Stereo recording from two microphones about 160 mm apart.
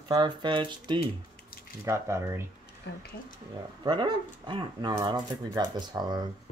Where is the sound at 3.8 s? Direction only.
25° right (ahead or behind).